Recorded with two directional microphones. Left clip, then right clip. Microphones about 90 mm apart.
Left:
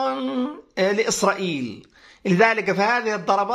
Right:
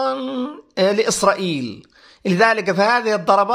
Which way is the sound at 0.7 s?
40° right (ahead or behind).